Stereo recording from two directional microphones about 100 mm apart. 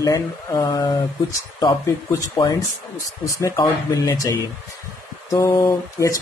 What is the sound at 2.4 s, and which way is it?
Speech, 55° left (ahead or behind).